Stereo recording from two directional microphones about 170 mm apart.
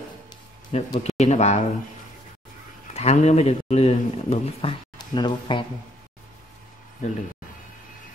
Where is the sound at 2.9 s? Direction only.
40° left (ahead or behind).